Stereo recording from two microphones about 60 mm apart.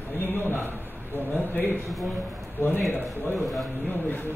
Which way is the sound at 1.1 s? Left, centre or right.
Left.